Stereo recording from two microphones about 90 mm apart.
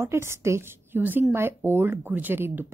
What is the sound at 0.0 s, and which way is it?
Speech, 30° right (ahead or behind).